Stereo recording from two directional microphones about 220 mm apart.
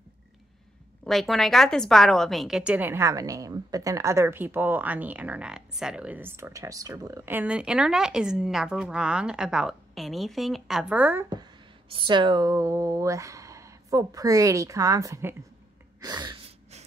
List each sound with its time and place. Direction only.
1.0 s a woman's voice: centre (ahead or behind)
11.9 s speech: 20° right (ahead or behind)
16.0 s gasp: 20° right (ahead or behind)